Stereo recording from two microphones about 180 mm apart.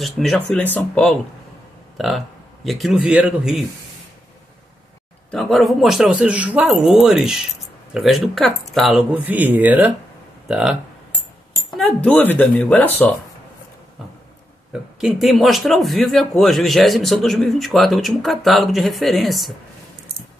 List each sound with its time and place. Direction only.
0.0 s a man's voice: centre (ahead or behind)
5.3 s speech: centre (ahead or behind)
14.7 s speech: 5° right (ahead or behind)